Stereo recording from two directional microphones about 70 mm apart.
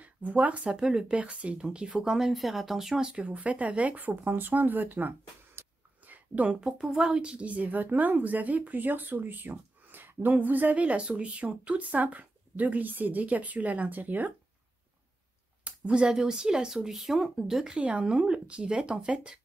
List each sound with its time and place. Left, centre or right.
0.0 s speech: right
5.6 s a sound: right
6.6 s speech: centre; by 14.3 s right
15.6 s speech: centre